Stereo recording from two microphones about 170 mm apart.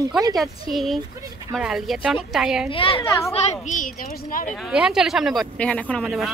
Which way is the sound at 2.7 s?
35° left (ahead or behind).